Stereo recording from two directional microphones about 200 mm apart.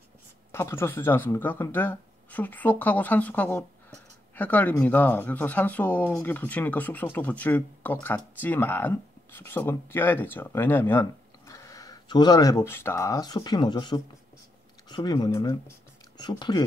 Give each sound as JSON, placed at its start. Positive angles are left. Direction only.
{"t": 0.5, "sound": "speech", "side_deg": 10}